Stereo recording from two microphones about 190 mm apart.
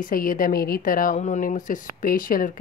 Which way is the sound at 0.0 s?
45° left (ahead or behind).